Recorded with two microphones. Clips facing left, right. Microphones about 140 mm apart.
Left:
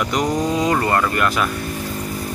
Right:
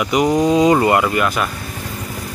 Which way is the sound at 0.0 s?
5° right (ahead or behind).